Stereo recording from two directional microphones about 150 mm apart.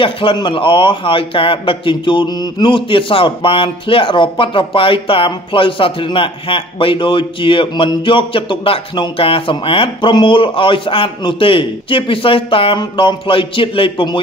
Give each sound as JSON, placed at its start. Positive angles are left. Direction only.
{"t": 0.0, "sound": "a man's voice", "side_deg": 35}